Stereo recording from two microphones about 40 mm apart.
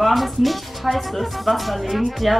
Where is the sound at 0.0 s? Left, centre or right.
Centre.